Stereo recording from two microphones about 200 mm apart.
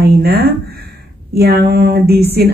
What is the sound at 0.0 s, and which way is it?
Speech, 50° right (ahead or behind).